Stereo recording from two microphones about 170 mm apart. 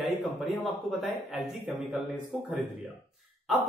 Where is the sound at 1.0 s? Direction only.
Centre (ahead or behind).